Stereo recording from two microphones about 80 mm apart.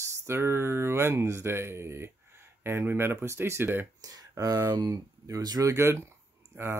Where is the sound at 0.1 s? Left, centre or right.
Right.